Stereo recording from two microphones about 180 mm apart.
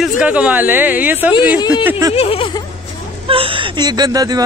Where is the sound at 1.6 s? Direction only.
25° left (ahead or behind).